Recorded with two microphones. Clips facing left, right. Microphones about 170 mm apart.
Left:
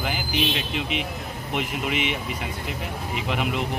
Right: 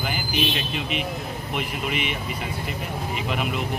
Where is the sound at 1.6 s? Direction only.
20° left (ahead or behind).